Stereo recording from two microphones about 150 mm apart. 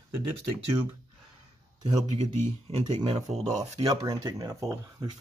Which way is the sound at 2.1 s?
50° right (ahead or behind).